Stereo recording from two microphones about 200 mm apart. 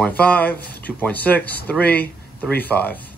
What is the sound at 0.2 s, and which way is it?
Speech, 10° left (ahead or behind).